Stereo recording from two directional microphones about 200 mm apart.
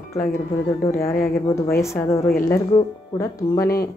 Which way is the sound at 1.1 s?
45° left (ahead or behind).